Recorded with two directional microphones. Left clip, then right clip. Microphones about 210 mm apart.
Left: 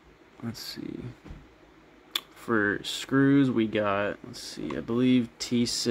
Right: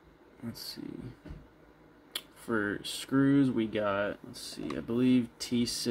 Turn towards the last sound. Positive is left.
turn(degrees=15)  # may be behind; listen again after turning